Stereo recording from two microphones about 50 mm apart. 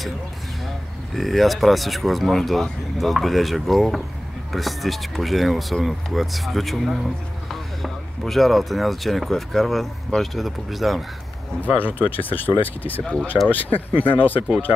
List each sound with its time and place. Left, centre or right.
1.1 s speech: centre
8.2 s speech: centre
11.6 s speech: left
13.0 s speech: left
13.5 s speech: left